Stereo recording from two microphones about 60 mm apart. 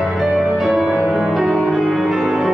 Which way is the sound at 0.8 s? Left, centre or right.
Right.